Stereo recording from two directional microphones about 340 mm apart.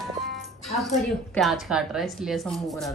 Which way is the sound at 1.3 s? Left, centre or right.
Centre.